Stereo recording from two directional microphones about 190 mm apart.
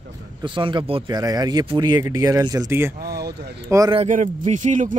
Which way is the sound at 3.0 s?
55° right (ahead or behind).